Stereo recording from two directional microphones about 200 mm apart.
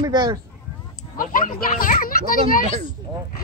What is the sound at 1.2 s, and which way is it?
Speech, 45° left (ahead or behind).